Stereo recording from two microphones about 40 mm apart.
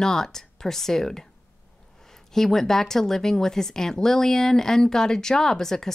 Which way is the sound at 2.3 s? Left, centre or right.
Centre.